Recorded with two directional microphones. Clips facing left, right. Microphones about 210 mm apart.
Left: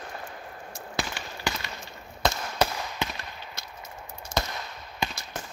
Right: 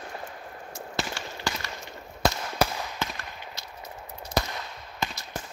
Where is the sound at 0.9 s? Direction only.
20° left (ahead or behind).